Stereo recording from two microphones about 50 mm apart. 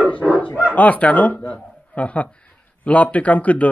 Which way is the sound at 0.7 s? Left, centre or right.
Left.